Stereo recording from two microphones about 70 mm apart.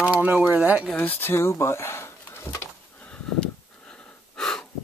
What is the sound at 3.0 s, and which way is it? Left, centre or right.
Wheeze, centre.